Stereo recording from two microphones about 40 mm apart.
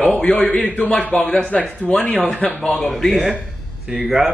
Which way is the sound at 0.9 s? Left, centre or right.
Left.